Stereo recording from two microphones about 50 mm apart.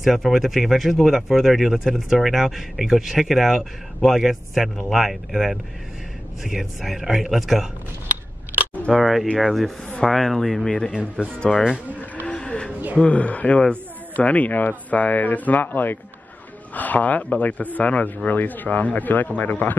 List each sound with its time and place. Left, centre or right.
0.0 s speech: centre
8.9 s speech: centre
10.9 s speech: right
11.3 s speech: centre
11.9 s a sound: left
12.3 s vehicle: left
13.0 s speech: left